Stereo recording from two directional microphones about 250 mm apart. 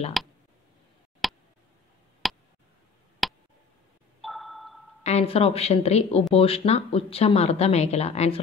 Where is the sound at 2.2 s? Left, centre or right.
Centre.